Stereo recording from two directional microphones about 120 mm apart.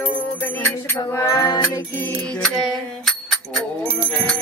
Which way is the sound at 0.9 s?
30° left (ahead or behind).